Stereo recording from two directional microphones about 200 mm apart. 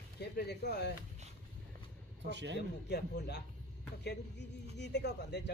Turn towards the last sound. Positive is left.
turn(degrees=55)  # may be behind; listen again after turning